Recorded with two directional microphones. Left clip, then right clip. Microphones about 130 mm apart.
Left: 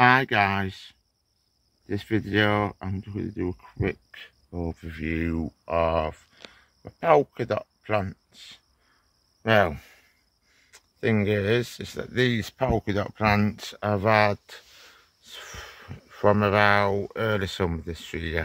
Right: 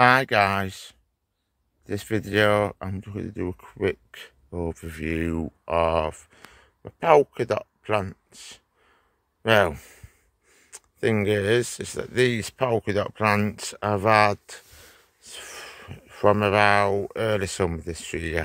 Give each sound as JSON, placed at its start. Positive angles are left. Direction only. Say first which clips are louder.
{"t": 0.0, "sound": "speech", "louder": "right 1 dB", "side_deg": -35}